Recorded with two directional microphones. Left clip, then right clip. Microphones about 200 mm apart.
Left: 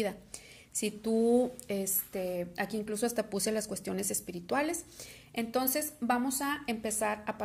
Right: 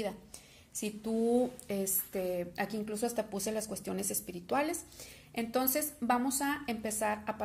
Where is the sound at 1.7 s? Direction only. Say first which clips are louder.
Left 1 dB; 10° left (ahead or behind).